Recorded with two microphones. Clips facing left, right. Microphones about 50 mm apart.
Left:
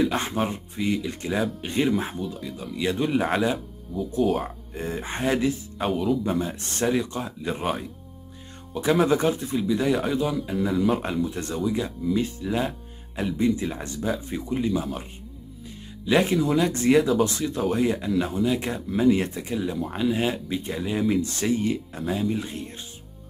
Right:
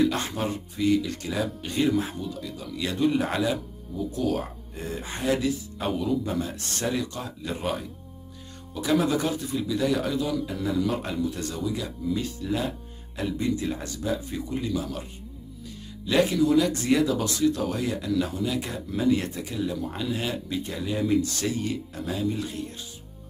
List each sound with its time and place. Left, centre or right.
0.0 s speech: left
4.1 s speech: left
5.8 s a man's voice: centre
6.2 s speech: left
8.8 s speech: left
10.4 s speech: centre
12.4 s speech: centre
16.1 s speech: left